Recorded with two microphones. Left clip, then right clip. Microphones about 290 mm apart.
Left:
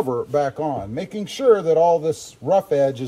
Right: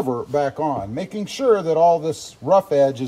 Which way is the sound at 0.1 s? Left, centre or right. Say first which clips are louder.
Even; right.